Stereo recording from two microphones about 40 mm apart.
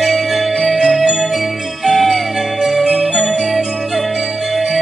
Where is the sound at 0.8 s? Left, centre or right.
Centre.